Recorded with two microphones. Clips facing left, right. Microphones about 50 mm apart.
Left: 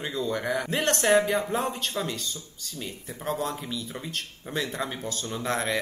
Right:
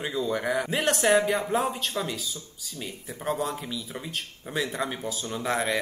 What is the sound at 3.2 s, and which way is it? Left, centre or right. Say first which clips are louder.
Speech: right 1 dB; centre.